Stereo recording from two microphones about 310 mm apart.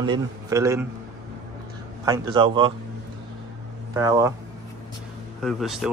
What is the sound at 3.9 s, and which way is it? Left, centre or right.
Speech, centre.